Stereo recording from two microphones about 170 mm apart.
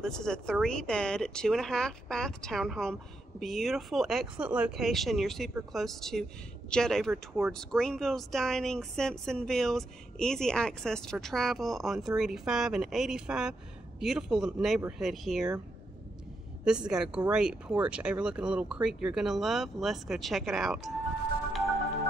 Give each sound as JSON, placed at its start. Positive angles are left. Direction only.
{"t": 0.0, "sound": "speech", "side_deg": 5}
{"t": 16.6, "sound": "speech", "side_deg": -5}